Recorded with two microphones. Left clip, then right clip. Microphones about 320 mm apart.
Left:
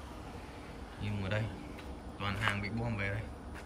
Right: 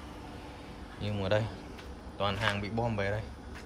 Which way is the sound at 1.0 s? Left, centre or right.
Centre.